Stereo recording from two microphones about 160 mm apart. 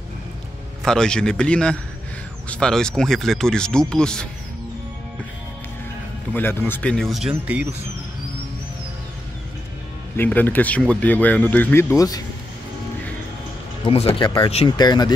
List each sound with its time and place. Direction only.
0.8 s speech: 5° left (ahead or behind)
6.3 s speech: 10° left (ahead or behind); by 7.7 s 10° right (ahead or behind)
10.1 s speech: 10° left (ahead or behind)
13.8 s speech: 35° left (ahead or behind)